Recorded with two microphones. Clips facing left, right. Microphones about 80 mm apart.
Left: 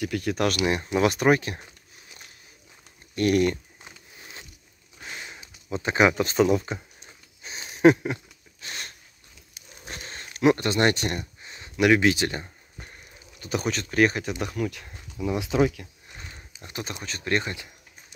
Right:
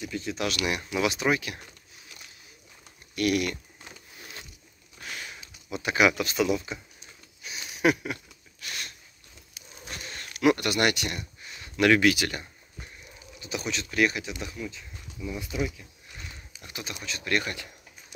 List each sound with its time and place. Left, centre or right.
0.0 s speech: left
0.7 s speech: left
3.2 s speech: left
5.0 s a sound: left
10.3 s speech: left
13.4 s speech: left
14.4 s speech: left
16.1 s speech: left